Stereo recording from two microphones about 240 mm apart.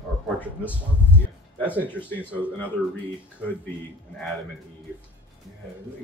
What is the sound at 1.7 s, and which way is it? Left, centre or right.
Speech, centre.